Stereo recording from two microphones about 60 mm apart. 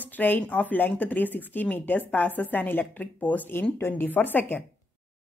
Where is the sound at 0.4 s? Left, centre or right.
Left.